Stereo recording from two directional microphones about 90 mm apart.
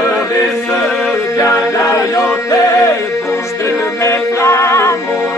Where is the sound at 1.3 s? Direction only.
35° left (ahead or behind).